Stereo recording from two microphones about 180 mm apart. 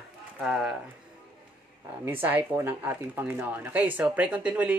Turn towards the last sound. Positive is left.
turn(degrees=-5)  # may be behind; listen again after turning